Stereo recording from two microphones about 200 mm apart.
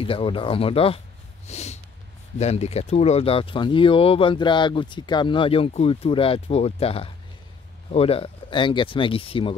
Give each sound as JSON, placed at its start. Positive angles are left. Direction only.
{"t": 0.0, "sound": "speech", "side_deg": 25}
{"t": 1.5, "sound": "snort", "side_deg": 35}
{"t": 2.3, "sound": "speech", "side_deg": 30}